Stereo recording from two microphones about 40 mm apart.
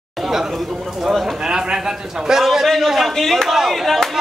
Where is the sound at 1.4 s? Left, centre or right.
Centre.